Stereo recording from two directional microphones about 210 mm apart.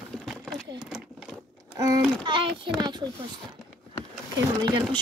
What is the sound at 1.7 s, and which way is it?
A child's voice, 15° right (ahead or behind).